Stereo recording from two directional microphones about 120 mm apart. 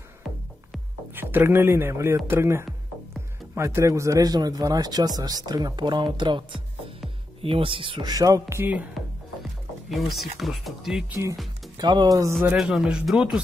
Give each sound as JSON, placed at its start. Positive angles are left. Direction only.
{"t": 1.1, "sound": "a man's voice", "side_deg": -20}
{"t": 9.8, "sound": "speech", "side_deg": 0}
{"t": 11.7, "sound": "a man's voice", "side_deg": -40}
{"t": 12.5, "sound": "speech", "side_deg": -5}